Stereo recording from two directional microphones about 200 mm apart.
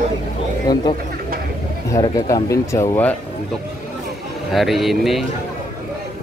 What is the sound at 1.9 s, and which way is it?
Speech, 15° left (ahead or behind).